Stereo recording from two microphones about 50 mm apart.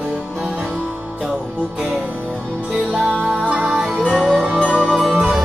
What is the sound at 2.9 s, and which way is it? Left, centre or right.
Music, centre.